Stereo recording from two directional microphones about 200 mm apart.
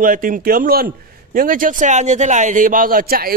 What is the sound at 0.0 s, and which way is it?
A man's voice, 45° right (ahead or behind).